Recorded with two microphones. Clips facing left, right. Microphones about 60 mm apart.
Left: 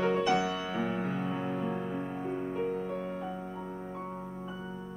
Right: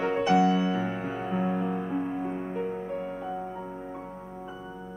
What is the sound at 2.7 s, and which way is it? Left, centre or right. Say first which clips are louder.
Music: right 2 dB; right.